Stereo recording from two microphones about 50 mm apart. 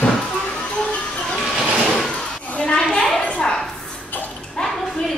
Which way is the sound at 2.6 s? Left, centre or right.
Centre.